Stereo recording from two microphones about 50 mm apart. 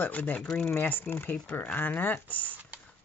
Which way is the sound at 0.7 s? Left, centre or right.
Left.